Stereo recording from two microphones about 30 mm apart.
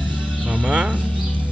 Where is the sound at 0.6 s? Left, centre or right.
Right.